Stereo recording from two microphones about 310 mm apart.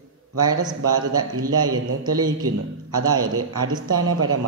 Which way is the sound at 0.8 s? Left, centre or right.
Right.